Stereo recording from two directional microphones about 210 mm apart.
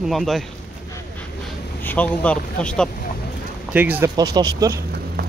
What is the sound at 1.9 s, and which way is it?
Speech, 5° left (ahead or behind).